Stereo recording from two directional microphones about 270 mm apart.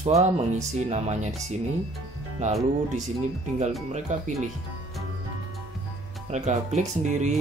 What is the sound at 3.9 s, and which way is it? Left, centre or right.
Speech, right.